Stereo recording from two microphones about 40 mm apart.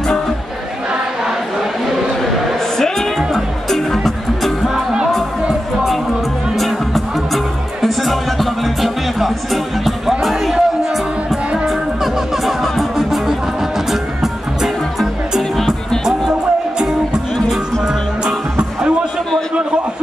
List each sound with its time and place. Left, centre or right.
2.8 s music: centre
4.6 s music: centre
6.5 s music: centre
15.5 s music: centre
16.1 s music: centre